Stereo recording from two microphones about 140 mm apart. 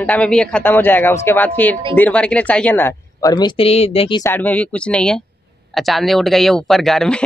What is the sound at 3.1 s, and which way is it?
Speech, 30° left (ahead or behind).